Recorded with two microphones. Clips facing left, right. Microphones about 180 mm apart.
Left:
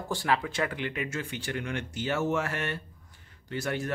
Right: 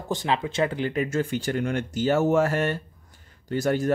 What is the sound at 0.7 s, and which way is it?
Speech, 35° right (ahead or behind).